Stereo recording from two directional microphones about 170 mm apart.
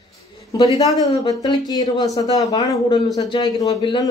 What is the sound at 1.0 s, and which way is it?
Speech, 20° left (ahead or behind).